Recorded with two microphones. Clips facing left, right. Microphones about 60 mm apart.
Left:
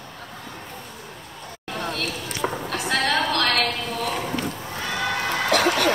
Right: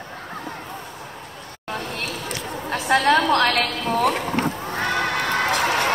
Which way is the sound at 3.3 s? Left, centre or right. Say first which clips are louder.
Right 3 dB; right.